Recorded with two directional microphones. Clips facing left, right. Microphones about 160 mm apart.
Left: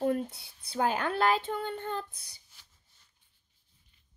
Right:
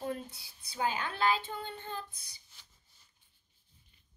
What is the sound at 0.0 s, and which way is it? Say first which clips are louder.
Speech: left 9 dB; 60° left (ahead or behind).